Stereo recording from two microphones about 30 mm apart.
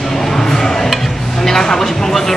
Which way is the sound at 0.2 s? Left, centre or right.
Centre.